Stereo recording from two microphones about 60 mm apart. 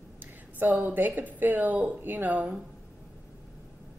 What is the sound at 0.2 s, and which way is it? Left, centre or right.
A woman's voice, right.